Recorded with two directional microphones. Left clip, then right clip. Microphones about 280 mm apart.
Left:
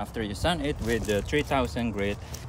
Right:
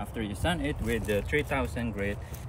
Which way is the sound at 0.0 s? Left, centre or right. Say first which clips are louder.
Left 3 dB; centre.